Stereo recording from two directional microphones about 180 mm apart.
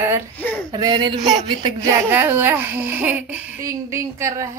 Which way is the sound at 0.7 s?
25° right (ahead or behind).